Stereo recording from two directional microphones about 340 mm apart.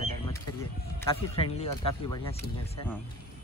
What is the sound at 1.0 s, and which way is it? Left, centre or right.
Speech, centre.